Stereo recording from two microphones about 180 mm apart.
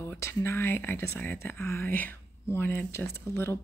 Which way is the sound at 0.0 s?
15° left (ahead or behind).